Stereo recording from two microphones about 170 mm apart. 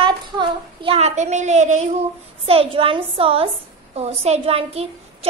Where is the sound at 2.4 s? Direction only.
35° right (ahead or behind).